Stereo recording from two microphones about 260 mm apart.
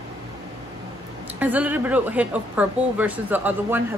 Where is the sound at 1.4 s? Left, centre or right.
Centre.